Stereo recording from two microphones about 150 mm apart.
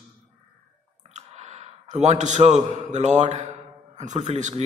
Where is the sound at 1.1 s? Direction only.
45° right (ahead or behind).